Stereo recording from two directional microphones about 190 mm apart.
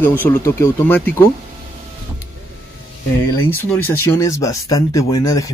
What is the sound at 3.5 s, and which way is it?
Speech, 10° left (ahead or behind).